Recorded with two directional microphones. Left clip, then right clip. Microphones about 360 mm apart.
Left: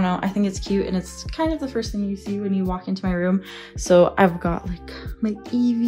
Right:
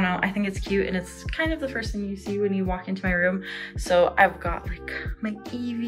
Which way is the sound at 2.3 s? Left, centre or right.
Left.